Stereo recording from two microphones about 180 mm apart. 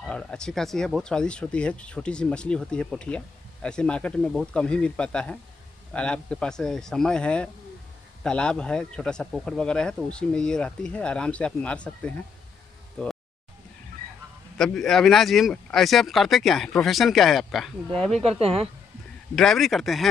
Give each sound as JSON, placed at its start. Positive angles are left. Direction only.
{"t": 0.0, "sound": "speech", "side_deg": 5}
{"t": 14.6, "sound": "speech", "side_deg": 0}
{"t": 18.4, "sound": "speech", "side_deg": -35}
{"t": 19.3, "sound": "speech", "side_deg": 0}